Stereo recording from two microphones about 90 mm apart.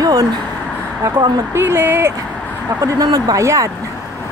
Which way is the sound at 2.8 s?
45° right (ahead or behind).